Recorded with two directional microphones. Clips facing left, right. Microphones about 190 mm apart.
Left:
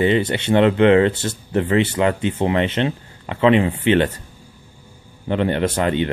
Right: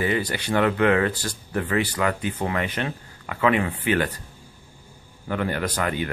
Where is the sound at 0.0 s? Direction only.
25° left (ahead or behind).